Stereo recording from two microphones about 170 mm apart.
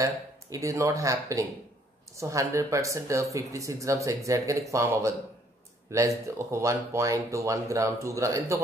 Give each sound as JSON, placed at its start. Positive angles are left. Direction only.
{"t": 0.0, "sound": "speech", "side_deg": -20}